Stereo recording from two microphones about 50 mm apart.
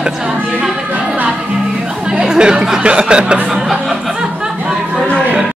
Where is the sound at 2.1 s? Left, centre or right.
Centre.